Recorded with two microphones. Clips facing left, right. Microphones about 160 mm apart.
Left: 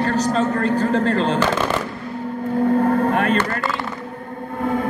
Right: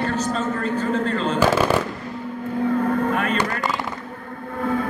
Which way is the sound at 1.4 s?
10° right (ahead or behind).